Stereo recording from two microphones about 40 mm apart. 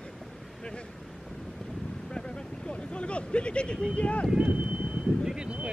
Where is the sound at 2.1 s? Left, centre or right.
Left.